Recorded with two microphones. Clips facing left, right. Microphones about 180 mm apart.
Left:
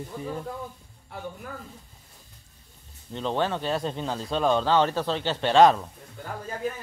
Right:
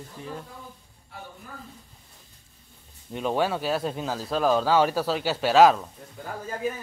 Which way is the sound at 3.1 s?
10° right (ahead or behind).